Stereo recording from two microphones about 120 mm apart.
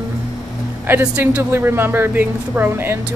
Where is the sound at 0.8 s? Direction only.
15° right (ahead or behind).